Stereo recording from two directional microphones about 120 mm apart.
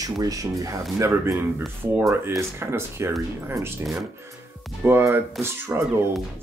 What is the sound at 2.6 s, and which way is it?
Speech, 20° right (ahead or behind).